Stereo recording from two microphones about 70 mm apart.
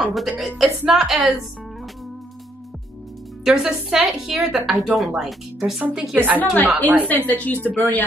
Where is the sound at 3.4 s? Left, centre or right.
Centre.